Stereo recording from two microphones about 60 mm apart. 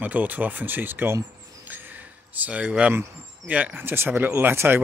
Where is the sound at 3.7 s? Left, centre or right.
Right.